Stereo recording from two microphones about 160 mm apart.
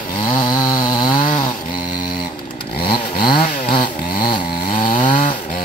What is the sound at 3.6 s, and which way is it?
Chainsaw, 30° left (ahead or behind).